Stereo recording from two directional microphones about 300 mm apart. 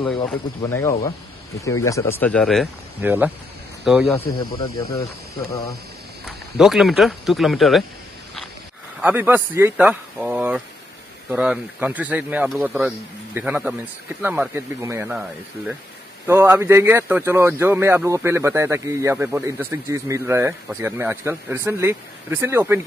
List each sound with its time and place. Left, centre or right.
0.6 s speech: centre
4.2 s speech: centre
6.2 s speech: centre
9.0 s speech: centre